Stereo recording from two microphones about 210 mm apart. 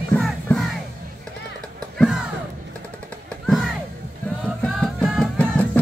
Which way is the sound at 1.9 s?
5° left (ahead or behind).